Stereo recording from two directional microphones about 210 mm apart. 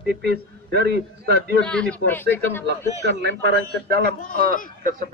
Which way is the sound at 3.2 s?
55° right (ahead or behind).